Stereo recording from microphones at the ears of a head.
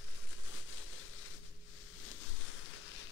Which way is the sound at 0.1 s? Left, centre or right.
Left.